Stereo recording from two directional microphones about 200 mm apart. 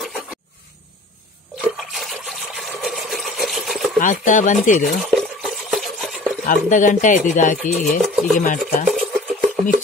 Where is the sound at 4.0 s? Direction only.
40° left (ahead or behind).